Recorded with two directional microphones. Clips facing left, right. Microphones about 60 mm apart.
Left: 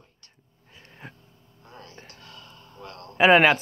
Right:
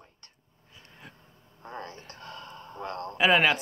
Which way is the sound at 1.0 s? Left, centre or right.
Left.